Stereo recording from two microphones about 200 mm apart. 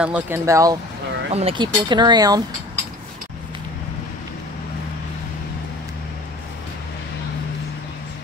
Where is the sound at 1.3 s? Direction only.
30° right (ahead or behind).